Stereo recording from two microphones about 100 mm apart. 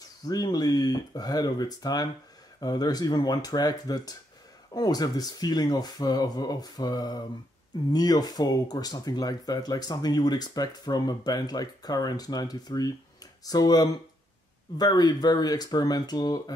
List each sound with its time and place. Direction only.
0.2 s speech: 40° left (ahead or behind)